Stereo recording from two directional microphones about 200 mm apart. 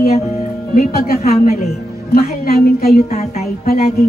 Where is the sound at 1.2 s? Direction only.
35° left (ahead or behind).